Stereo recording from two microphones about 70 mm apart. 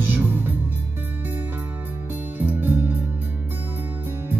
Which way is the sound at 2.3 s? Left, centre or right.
Right.